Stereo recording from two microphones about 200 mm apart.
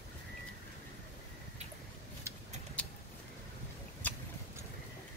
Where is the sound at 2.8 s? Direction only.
5° left (ahead or behind).